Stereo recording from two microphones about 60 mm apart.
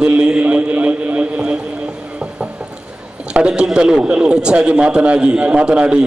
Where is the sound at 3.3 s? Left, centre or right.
Centre.